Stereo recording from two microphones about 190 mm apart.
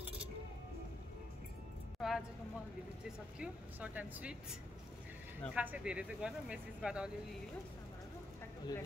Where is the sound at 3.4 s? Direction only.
10° right (ahead or behind).